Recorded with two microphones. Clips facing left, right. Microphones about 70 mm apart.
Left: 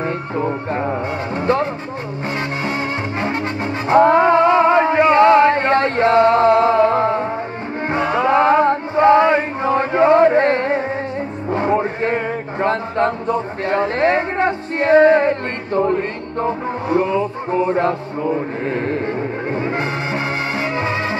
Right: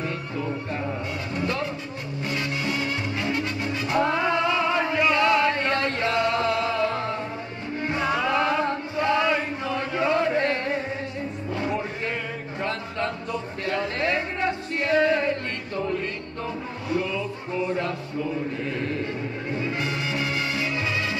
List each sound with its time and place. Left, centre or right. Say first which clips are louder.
0.0 s music: left 9 dB; left
7.9 s chant: left 8 dB; left
11.5 s a sound: left 11 dB; left